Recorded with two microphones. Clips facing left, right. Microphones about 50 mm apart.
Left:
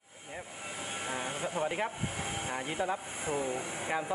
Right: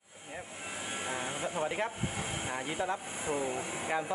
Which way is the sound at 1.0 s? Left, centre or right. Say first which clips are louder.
Left 1 dB; centre.